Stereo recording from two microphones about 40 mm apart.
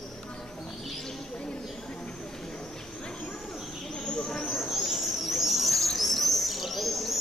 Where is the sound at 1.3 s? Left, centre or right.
Left.